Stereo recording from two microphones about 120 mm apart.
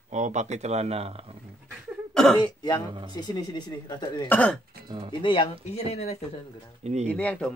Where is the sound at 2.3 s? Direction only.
35° left (ahead or behind).